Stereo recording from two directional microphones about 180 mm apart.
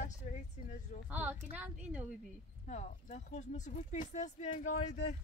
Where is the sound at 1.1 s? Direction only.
10° right (ahead or behind).